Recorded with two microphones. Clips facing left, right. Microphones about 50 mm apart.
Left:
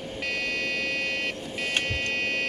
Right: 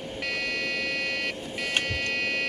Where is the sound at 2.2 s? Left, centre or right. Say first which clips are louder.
Even; centre.